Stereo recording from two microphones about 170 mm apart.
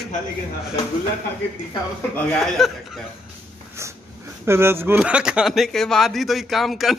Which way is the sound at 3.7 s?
15° right (ahead or behind).